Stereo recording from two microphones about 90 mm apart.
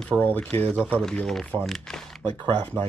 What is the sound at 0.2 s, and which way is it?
Speech, 20° left (ahead or behind).